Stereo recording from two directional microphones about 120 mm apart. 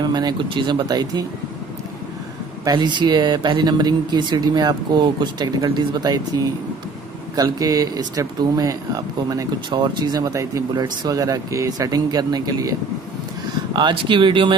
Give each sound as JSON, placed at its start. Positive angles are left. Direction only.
{"t": 0.0, "sound": "speech", "side_deg": -35}
{"t": 2.6, "sound": "speech", "side_deg": -40}
{"t": 13.7, "sound": "speech", "side_deg": -40}